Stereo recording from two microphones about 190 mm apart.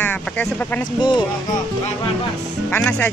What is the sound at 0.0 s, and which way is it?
Speech, 10° left (ahead or behind).